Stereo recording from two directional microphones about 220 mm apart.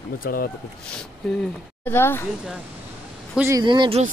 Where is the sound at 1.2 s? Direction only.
Centre (ahead or behind).